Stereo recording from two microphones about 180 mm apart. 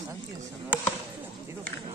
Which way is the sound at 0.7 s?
5° right (ahead or behind).